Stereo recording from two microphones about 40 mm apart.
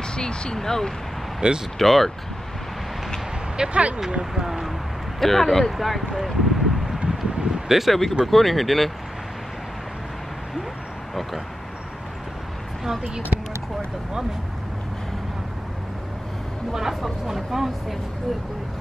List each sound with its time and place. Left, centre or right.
0.1 s speech: left
1.4 s speech: right
1.8 s speech: centre
3.5 s speech: right
4.4 s speech: centre
5.2 s speech: centre
7.1 s a sound: centre
7.9 s speech: centre
12.8 s speech: centre
16.7 s speech: centre